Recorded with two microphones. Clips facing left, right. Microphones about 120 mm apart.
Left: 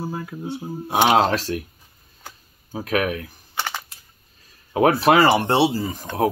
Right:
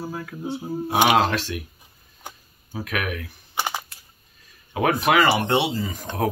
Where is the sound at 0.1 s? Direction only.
20° left (ahead or behind).